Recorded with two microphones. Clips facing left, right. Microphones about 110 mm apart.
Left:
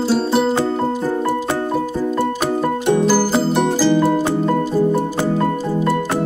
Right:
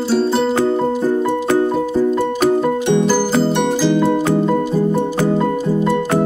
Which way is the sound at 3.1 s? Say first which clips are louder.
Right 1 dB; 5° left (ahead or behind).